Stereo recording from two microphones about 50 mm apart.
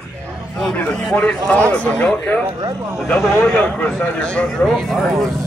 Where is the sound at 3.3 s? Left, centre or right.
Left.